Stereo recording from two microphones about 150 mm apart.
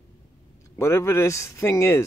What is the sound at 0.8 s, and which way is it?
Speech, 15° left (ahead or behind).